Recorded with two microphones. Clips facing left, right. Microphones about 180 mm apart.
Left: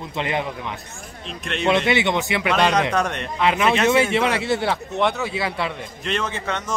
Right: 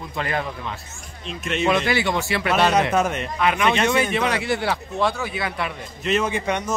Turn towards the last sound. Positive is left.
turn(degrees=-15)  # may be behind; listen again after turning